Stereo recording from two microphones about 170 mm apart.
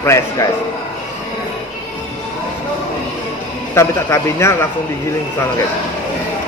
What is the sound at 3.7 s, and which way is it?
Speech, 15° left (ahead or behind).